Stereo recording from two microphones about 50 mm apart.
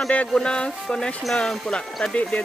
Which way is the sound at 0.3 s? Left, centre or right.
Centre.